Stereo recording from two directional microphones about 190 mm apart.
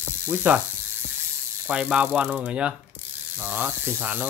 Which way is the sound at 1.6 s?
5° right (ahead or behind).